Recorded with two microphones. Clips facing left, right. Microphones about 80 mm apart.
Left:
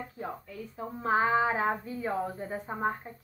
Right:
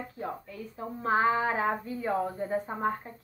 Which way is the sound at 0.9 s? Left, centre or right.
Left.